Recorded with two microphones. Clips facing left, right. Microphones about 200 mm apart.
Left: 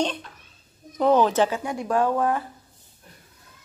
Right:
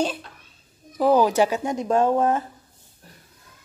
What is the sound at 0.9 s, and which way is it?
Speech, 5° right (ahead or behind).